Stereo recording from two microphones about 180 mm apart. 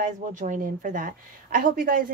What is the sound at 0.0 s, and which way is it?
A woman's voice, 45° right (ahead or behind).